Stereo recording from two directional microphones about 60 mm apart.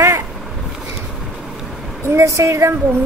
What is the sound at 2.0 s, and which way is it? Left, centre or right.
Speech, right.